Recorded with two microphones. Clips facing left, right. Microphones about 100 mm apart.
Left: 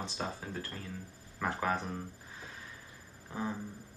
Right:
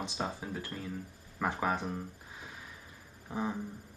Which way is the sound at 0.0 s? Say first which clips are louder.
Right 2 dB; 15° right (ahead or behind).